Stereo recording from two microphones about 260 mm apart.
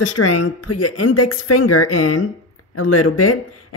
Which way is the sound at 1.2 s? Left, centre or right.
Left.